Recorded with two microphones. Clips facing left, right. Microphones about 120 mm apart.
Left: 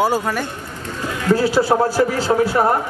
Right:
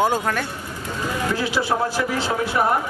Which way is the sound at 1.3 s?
40° left (ahead or behind).